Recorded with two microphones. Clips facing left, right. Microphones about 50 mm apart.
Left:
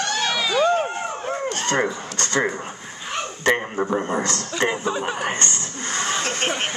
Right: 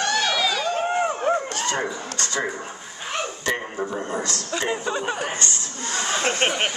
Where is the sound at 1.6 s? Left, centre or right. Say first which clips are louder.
Left 3 dB; left.